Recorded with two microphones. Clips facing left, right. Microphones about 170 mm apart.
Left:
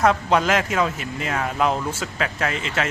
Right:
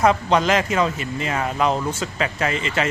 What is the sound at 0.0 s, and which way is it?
Speech, centre (ahead or behind).